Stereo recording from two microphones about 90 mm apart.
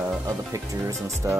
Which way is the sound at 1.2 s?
30° right (ahead or behind).